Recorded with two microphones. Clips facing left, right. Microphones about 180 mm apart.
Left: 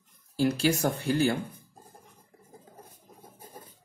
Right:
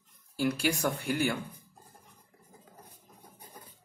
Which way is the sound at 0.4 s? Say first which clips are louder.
Left 4 dB; 30° left (ahead or behind).